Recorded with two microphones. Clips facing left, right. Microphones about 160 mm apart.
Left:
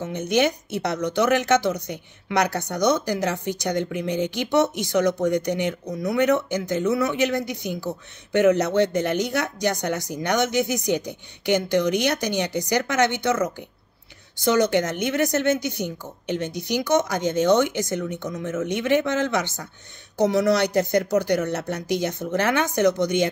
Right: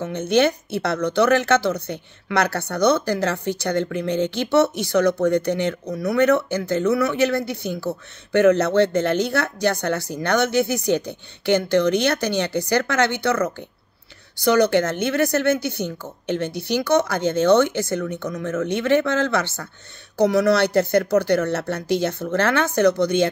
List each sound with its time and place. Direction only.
0.0 s speech: 15° left (ahead or behind)